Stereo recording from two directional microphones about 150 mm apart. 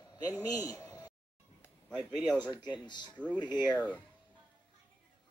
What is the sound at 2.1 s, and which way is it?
Speech, centre (ahead or behind).